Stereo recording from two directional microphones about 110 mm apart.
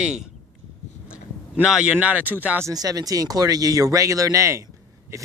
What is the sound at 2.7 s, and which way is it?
Speech, 35° right (ahead or behind).